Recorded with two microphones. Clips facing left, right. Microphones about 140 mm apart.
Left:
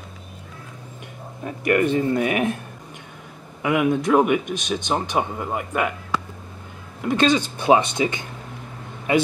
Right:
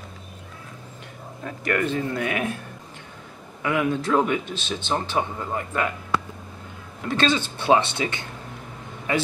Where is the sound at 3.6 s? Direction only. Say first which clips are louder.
Left 4 dB; 15° left (ahead or behind).